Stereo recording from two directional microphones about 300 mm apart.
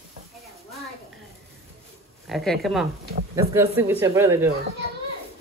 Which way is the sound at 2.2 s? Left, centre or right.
Centre.